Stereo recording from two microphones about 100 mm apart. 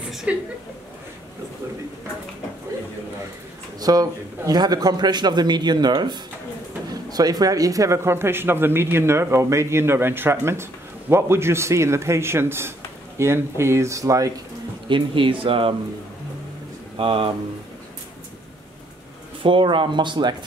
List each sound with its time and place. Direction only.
0.1 s a sound: 5° right (ahead or behind)
3.8 s a man's voice: 40° right (ahead or behind)
14.9 s speech: 55° right (ahead or behind)
16.9 s speech: 60° right (ahead or behind)
19.4 s a man's voice: 55° right (ahead or behind)